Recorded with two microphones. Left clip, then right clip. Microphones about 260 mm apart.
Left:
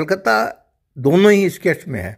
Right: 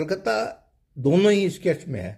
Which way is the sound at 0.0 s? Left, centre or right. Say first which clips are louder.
Left 8 dB; left.